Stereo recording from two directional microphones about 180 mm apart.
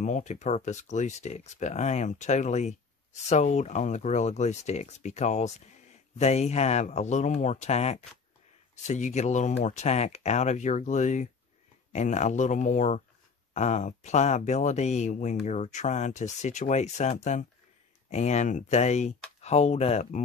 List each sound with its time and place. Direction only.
0.0 s speech: 40° left (ahead or behind)